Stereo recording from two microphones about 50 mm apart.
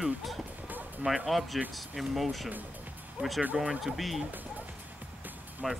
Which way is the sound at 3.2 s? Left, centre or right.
Right.